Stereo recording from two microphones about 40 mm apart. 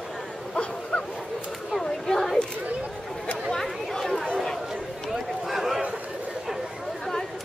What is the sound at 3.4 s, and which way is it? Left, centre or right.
Chatter, centre.